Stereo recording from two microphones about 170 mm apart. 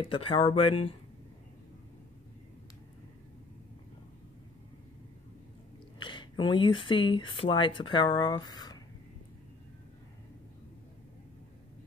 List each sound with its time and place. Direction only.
0.0 s speech: 30° left (ahead or behind)
5.9 s speech: 25° left (ahead or behind)